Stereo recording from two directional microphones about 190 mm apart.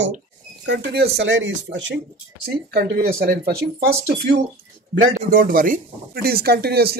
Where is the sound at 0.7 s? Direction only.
60° right (ahead or behind).